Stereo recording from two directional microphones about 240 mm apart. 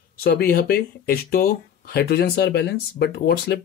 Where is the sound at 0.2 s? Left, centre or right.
Left.